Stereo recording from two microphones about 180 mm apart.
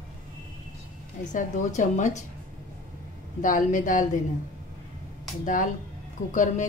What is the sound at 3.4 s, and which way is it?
Speech, 45° left (ahead or behind).